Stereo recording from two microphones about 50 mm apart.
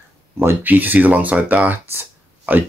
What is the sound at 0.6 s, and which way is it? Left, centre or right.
Speech, right.